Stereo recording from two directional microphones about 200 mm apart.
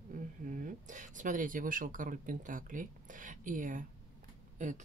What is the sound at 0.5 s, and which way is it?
Speech, 40° right (ahead or behind).